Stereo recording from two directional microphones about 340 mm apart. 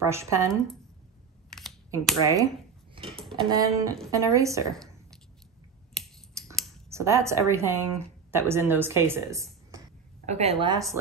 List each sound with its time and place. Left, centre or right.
0.1 s speech: centre
1.5 s computer keyboard: centre
2.2 s dishes: centre
3.4 s speech: centre
6.0 s finger snapping: centre
6.5 s a sound: centre
8.3 s speech: centre